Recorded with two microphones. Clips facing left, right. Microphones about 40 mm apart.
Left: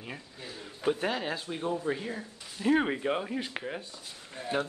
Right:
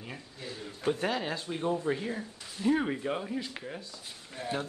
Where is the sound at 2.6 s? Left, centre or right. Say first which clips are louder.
Left 2 dB; left.